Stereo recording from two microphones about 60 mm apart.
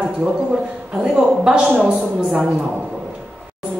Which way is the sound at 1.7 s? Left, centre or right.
Right.